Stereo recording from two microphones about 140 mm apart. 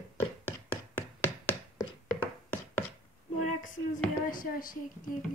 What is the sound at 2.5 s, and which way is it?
Chopping, 15° left (ahead or behind).